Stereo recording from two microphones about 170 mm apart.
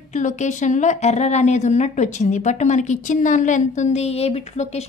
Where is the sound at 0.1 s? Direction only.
45° left (ahead or behind).